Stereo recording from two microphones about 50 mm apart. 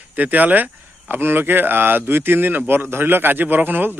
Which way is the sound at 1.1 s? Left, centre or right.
Right.